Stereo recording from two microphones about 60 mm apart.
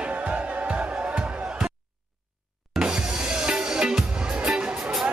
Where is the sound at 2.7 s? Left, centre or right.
Centre.